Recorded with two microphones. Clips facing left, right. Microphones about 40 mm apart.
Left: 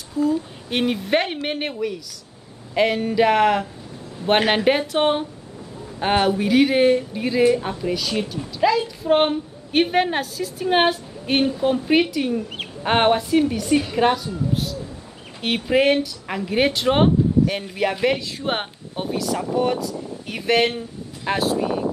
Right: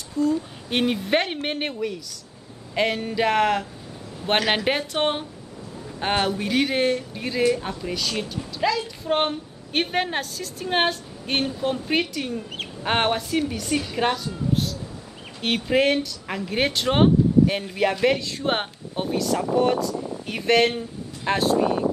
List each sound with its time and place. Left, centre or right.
0.2 s speech: centre
2.7 s speech: centre
4.2 s speech: left
4.6 s a woman's voice: centre